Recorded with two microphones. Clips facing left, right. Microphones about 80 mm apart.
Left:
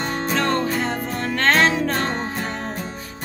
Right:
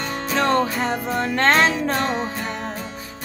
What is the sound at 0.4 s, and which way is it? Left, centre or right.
Music, centre.